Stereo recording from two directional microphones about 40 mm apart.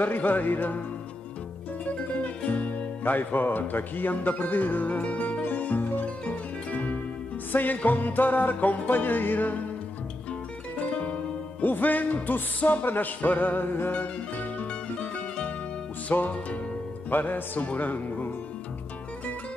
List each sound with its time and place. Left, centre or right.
0.0 s speech: left
1.9 s music: left
3.0 s speech: left
5.4 s music: left
7.5 s speech: left
10.8 s music: left
11.6 s speech: left
13.9 s music: left
16.2 s music: left
17.1 s speech: left